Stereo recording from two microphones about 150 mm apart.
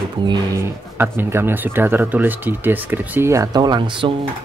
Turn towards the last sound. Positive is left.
turn(degrees=-30)  # may be behind; listen again after turning